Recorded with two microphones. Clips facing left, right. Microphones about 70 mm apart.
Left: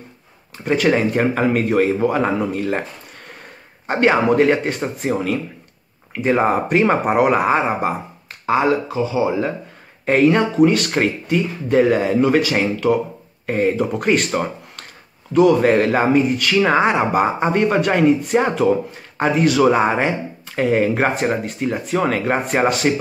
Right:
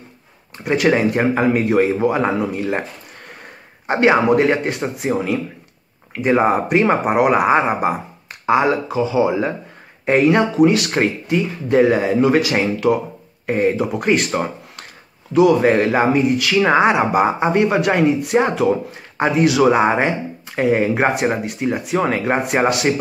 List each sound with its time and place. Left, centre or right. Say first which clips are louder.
0.7 s speech: right 1 dB; centre
3.8 s speech: right 1 dB; centre
10.0 s speech: even; centre